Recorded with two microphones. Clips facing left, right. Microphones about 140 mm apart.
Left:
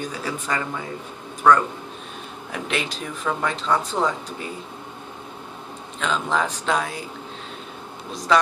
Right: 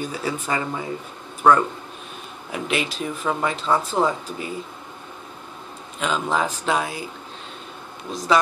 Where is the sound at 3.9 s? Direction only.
10° right (ahead or behind).